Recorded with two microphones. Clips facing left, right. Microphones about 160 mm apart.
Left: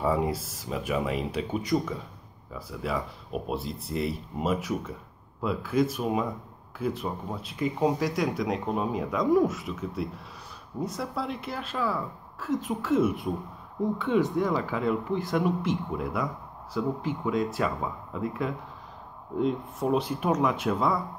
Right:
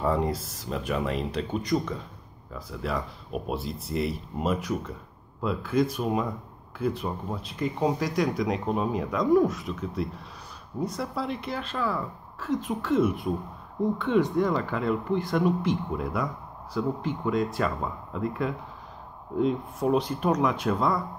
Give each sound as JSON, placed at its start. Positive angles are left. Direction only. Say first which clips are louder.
{"t": 0.0, "sound": "speech", "louder": "even", "side_deg": 5}